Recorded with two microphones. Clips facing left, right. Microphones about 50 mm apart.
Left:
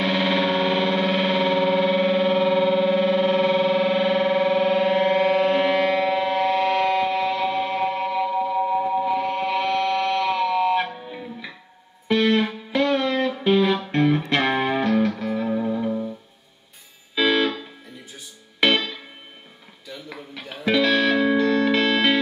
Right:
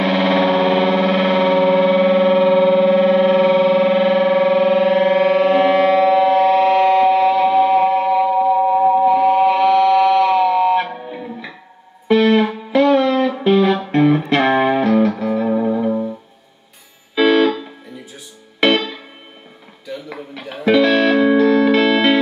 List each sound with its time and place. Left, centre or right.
0.0 s effects unit: centre
9.1 s music: centre
10.9 s guitar: centre
12.1 s music: centre
15.5 s music: centre
17.1 s music: centre
19.9 s music: centre